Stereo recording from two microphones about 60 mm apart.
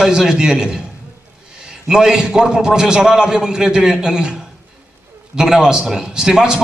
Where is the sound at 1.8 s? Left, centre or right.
Centre.